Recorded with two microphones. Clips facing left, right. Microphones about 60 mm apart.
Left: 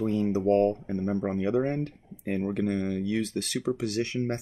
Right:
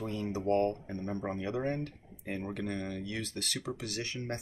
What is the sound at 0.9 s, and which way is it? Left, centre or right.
Speech, centre.